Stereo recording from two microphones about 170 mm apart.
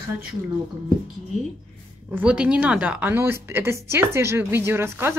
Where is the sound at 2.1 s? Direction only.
5° right (ahead or behind).